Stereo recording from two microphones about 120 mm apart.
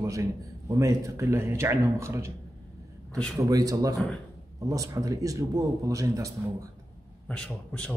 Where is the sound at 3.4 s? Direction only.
30° right (ahead or behind).